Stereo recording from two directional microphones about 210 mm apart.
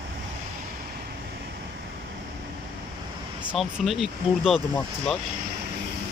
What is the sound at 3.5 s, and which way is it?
Speech, centre (ahead or behind).